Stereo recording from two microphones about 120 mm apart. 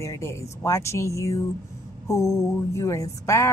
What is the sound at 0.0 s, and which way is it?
Speech, 25° left (ahead or behind).